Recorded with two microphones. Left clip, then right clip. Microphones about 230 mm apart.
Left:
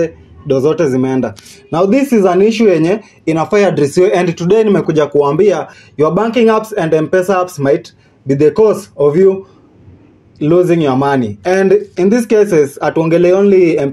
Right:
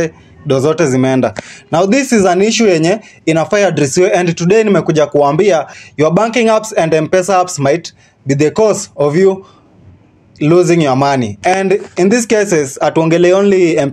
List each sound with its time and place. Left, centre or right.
0.0 s speech: right
10.4 s speech: right